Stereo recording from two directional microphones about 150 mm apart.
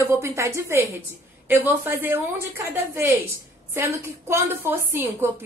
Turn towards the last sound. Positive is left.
turn(degrees=-15)  # may be behind; listen again after turning